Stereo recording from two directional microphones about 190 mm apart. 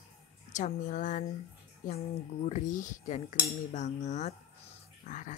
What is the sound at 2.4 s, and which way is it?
Speech, 40° left (ahead or behind).